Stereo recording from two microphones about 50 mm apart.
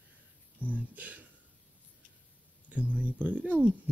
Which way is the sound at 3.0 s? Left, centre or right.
Right.